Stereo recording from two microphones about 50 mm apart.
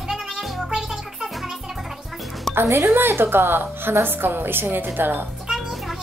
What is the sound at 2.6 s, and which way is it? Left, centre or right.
A woman's voice, right.